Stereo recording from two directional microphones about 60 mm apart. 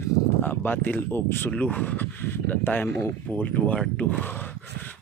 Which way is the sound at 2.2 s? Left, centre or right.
Left.